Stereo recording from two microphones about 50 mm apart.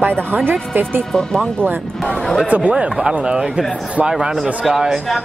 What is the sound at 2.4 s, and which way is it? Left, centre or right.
Speech, right.